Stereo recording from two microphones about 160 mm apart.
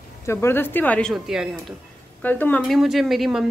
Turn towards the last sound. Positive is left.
turn(degrees=0)  # may be behind; listen again after turning